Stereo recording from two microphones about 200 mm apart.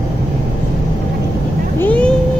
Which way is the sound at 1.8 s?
5° left (ahead or behind).